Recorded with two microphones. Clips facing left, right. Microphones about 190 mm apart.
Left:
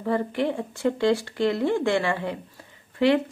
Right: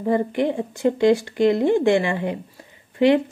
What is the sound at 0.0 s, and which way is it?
Speech, 15° right (ahead or behind).